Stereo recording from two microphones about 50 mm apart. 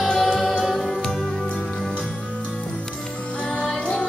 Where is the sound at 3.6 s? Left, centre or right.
Centre.